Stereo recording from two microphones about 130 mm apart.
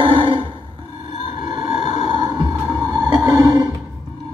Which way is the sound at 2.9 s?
30° right (ahead or behind).